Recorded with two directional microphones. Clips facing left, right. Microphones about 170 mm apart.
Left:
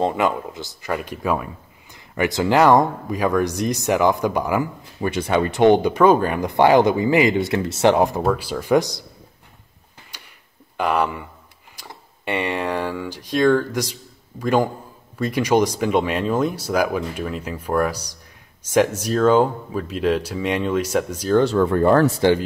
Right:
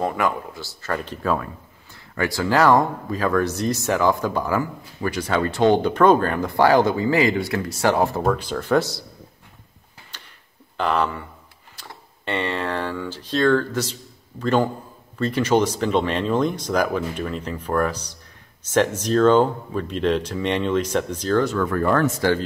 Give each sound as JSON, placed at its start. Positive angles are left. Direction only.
{"t": 0.0, "sound": "speech", "side_deg": 20}
{"t": 8.2, "sound": "speech", "side_deg": 5}
{"t": 10.1, "sound": "a sound", "side_deg": 10}
{"t": 10.8, "sound": "speech", "side_deg": 10}
{"t": 21.4, "sound": "speech", "side_deg": 30}